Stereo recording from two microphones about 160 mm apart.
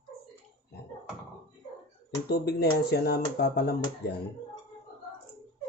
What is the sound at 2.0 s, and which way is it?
Speech, 85° left.